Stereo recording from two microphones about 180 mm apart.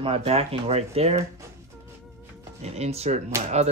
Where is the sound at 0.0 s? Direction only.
30° right (ahead or behind).